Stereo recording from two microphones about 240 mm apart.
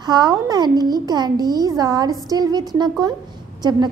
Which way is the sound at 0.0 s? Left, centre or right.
Centre.